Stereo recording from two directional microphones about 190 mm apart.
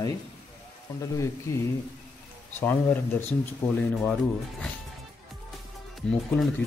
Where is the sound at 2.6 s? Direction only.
10° left (ahead or behind).